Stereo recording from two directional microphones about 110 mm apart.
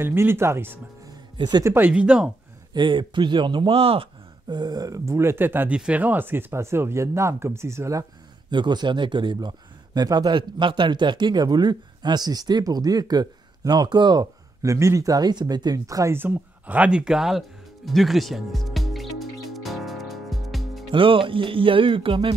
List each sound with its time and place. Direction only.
0.0 s speech: 20° right (ahead or behind)
1.3 s speech: 40° right (ahead or behind)
1.6 s speech: 20° right (ahead or behind)
1.9 s speech: 10° right (ahead or behind)
2.7 s music: 45° right (ahead or behind)
3.7 s speech: 60° right (ahead or behind)
4.5 s speech: 40° right (ahead or behind)
8.5 s speech: 45° right (ahead or behind)
16.2 s music: 15° right (ahead or behind); by 20.8 s centre (ahead or behind)
20.9 s music: 50° right (ahead or behind)